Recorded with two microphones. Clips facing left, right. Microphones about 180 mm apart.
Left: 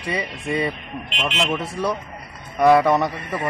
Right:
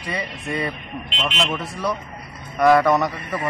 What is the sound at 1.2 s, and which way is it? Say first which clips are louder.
Speech: left 1 dB; 10° left (ahead or behind).